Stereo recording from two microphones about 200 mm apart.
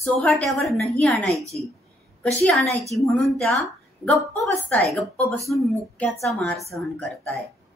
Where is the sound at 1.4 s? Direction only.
15° right (ahead or behind).